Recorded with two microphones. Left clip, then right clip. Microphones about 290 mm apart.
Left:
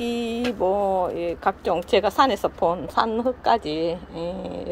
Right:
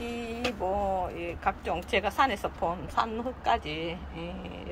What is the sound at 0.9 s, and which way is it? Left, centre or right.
A woman's voice, left.